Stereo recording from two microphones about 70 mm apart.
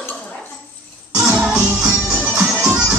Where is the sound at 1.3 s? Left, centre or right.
Centre.